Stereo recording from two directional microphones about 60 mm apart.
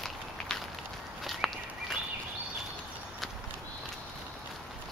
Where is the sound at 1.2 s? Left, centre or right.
Centre.